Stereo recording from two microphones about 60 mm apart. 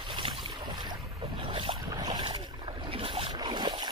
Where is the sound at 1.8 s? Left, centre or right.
Right.